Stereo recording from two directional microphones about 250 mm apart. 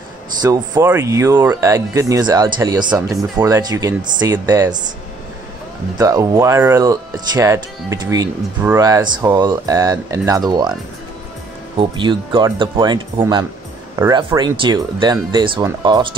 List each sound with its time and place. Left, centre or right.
0.4 s speech: centre
5.9 s speech: centre
12.0 s speech: centre